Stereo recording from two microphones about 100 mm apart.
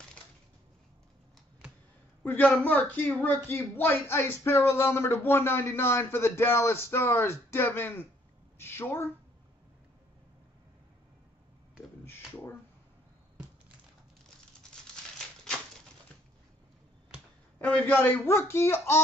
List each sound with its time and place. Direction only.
2.2 s speech: 20° left (ahead or behind)
17.6 s speech: 15° left (ahead or behind)